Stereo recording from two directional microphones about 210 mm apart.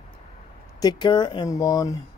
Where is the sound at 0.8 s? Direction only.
20° left (ahead or behind).